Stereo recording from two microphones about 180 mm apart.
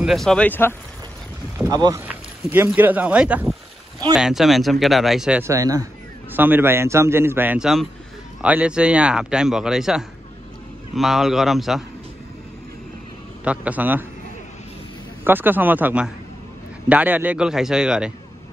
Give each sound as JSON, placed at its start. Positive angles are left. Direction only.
{"t": 0.0, "sound": "speech", "side_deg": 0}
{"t": 1.7, "sound": "speech", "side_deg": -20}
{"t": 2.0, "sound": "speech", "side_deg": -10}
{"t": 5.4, "sound": "a man's voice", "side_deg": -20}
{"t": 13.4, "sound": "a man's voice", "side_deg": -10}
{"t": 15.2, "sound": "a man's voice", "side_deg": -10}